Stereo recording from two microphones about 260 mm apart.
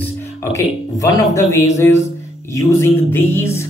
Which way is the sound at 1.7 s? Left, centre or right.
Centre.